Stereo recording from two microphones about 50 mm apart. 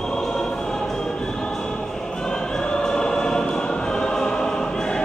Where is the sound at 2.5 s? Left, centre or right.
Centre.